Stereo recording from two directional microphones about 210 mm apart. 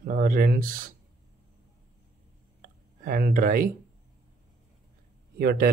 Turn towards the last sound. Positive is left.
turn(degrees=-45)  # may be behind; listen again after turning